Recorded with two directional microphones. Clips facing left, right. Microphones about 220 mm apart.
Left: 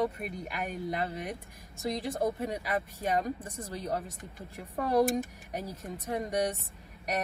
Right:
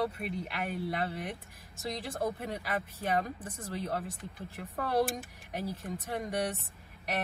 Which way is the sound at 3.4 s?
15° left (ahead or behind).